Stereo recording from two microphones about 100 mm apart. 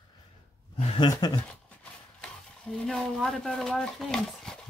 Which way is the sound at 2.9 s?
5° left (ahead or behind).